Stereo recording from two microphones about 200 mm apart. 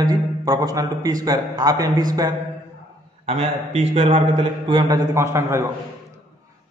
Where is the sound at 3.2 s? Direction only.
30° right (ahead or behind); by 5.7 s 15° right (ahead or behind).